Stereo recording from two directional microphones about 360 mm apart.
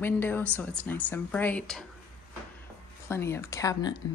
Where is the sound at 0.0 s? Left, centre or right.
Centre.